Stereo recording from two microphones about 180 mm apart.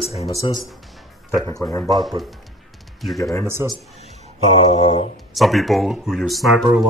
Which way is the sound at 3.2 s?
20° left (ahead or behind).